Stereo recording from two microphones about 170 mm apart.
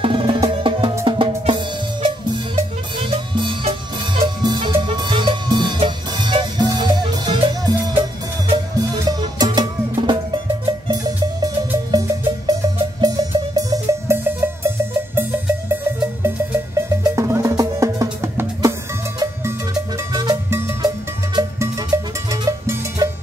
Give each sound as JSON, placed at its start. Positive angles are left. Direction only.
{"t": 0.0, "sound": "music", "side_deg": -30}
{"t": 11.9, "sound": "music", "side_deg": -20}
{"t": 17.0, "sound": "music", "side_deg": -20}